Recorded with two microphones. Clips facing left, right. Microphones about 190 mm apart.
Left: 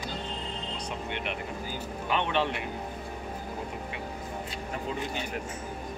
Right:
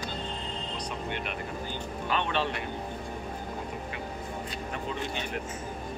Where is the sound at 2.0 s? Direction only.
15° left (ahead or behind).